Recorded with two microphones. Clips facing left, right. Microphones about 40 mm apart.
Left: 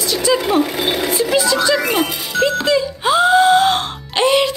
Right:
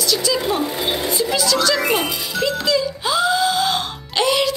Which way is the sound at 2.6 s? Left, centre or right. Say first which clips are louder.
Left 4 dB; left.